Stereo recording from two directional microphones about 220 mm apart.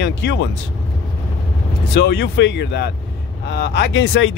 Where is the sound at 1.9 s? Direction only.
50° left (ahead or behind).